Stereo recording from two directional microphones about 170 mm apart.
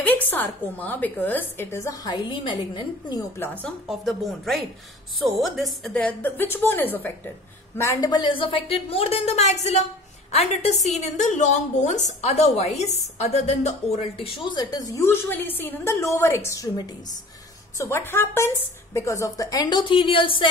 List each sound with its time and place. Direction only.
0.0 s a woman's voice: 10° left (ahead or behind)
3.4 s a woman's voice: 10° left (ahead or behind)
3.8 s a woman's voice: centre (ahead or behind); by 20.4 s 30° left (ahead or behind)